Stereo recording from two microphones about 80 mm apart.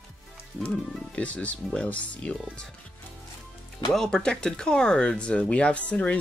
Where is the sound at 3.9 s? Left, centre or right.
Centre.